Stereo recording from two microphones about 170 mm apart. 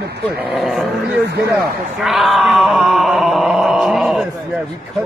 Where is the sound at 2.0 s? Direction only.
Centre (ahead or behind).